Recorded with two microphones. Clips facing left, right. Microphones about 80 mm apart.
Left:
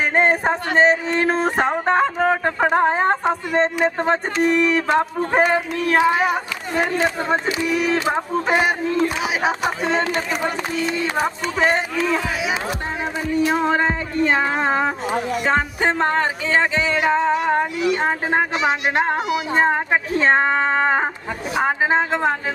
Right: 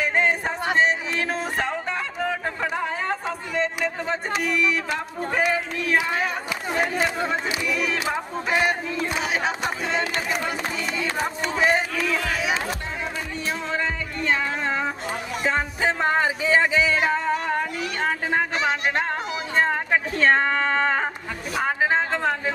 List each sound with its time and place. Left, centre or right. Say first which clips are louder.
0.0 s music: left 5 dB; left
0.7 s a sound: left 6 dB; left
3.3 s speech: left 7 dB; left
6.0 s speech: left 8 dB; centre
7.4 s speech: left 5 dB; left
11.5 s speech: left 1 dB; left
13.5 s music: left 4 dB; left
16.0 s speech: left 2 dB; centre
17.1 s a sound: left 6 dB; left
18.7 s speech: left 4 dB; centre